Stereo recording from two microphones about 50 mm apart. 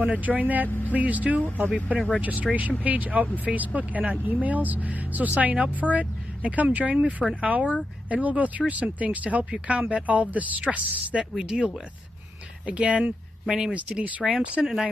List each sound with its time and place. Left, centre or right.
0.0 s speech: right
2.5 s speech: centre
2.8 s speech: right
7.0 s a woman's voice: right
13.5 s speech: centre
13.7 s a woman's voice: right